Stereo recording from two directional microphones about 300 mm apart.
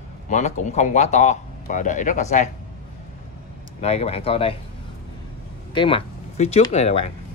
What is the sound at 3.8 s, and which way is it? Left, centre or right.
Speech, left.